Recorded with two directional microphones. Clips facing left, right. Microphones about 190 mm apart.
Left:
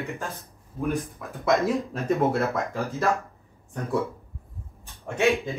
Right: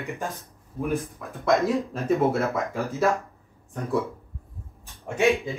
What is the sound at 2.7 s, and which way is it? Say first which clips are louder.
Speech: right 1 dB; 15° left (ahead or behind).